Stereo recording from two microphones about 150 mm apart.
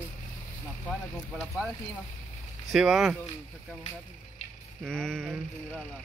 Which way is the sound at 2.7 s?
Centre (ahead or behind).